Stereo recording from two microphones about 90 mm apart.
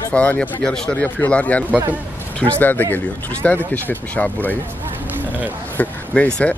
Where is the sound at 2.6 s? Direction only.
20° left (ahead or behind).